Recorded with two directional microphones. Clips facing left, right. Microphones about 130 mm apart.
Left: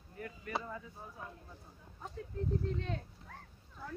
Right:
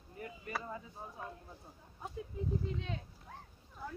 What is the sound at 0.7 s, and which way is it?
Speech, 25° right (ahead or behind).